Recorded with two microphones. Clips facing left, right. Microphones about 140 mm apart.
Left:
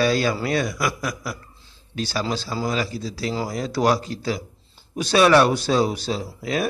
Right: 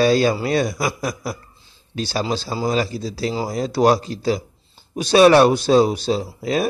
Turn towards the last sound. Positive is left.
turn(degrees=-25)  # may be behind; listen again after turning